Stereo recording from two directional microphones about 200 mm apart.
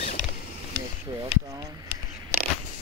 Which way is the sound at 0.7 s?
20° right (ahead or behind).